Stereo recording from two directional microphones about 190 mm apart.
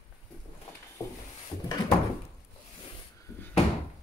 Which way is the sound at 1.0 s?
20° left (ahead or behind).